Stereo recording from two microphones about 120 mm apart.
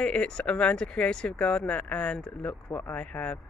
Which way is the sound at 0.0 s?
10° left (ahead or behind).